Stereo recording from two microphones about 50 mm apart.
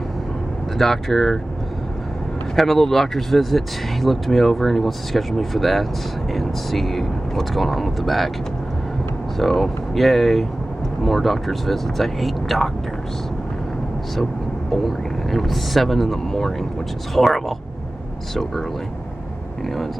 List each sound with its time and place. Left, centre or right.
0.7 s speech: centre
2.5 s speech: centre
9.4 s speech: centre
14.7 s speech: centre